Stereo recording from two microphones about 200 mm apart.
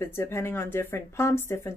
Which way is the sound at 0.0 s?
10° left (ahead or behind).